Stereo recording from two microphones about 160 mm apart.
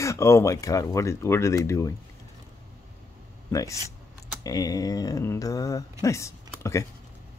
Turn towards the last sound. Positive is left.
turn(degrees=20)  # may be behind; listen again after turning